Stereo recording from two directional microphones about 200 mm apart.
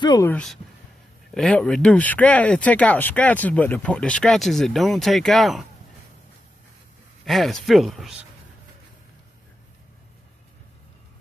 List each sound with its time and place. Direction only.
0.0 s speech: 20° left (ahead or behind)
0.3 s speech: 5° left (ahead or behind)
7.2 s speech: centre (ahead or behind)